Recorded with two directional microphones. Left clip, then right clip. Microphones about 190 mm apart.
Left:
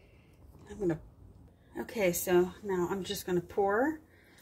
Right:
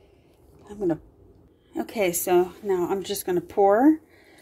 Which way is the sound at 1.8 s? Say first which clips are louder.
Right 6 dB; 40° right (ahead or behind).